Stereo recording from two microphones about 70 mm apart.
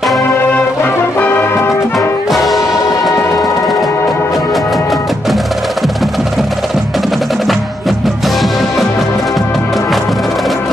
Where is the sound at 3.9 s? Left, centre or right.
Left.